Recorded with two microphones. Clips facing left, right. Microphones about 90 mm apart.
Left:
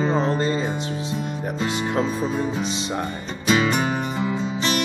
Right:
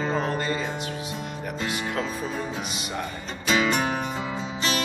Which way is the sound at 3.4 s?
5° left (ahead or behind).